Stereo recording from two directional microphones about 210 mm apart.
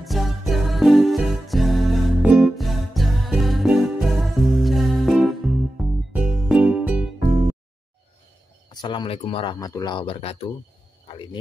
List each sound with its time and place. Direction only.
0.0 s music: centre (ahead or behind)
8.8 s speech: 25° left (ahead or behind)